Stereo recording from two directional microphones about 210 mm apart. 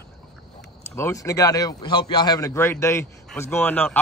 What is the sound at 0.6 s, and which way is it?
Speech, 10° left (ahead or behind).